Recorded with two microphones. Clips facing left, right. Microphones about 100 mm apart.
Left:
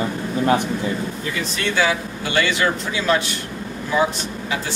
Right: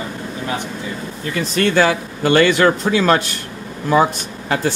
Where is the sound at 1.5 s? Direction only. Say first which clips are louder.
Right 6 dB; 55° right (ahead or behind).